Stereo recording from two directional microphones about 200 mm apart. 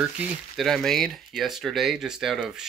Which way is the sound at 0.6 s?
Centre (ahead or behind).